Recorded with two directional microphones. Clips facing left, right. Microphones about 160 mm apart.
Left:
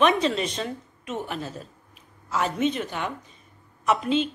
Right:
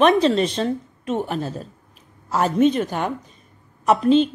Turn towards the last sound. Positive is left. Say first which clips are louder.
# right 7 dB
turn(degrees=-35)  # may be behind; listen again after turning